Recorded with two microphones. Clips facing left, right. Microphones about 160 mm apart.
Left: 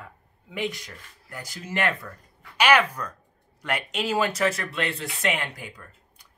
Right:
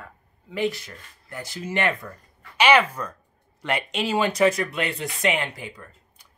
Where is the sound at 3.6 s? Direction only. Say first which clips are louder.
Right 2 dB; 5° left (ahead or behind).